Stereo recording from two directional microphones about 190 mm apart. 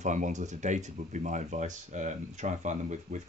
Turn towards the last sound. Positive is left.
turn(degrees=-40)  # may be behind; listen again after turning